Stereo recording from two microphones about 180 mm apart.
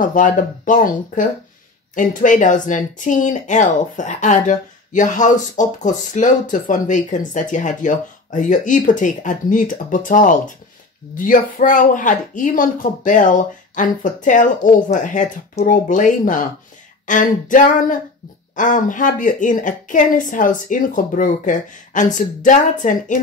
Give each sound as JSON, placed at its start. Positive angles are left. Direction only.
{"t": 0.0, "sound": "speech", "side_deg": 50}